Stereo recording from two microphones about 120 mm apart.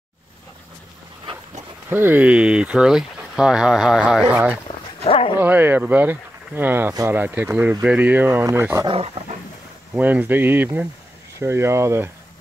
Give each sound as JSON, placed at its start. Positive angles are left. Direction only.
{"t": 1.9, "sound": "speech", "side_deg": -20}
{"t": 4.7, "sound": "dog", "side_deg": 40}
{"t": 5.0, "sound": "speech", "side_deg": 55}
{"t": 5.4, "sound": "speech", "side_deg": -15}
{"t": 8.8, "sound": "speech", "side_deg": -55}
{"t": 9.9, "sound": "speech", "side_deg": -15}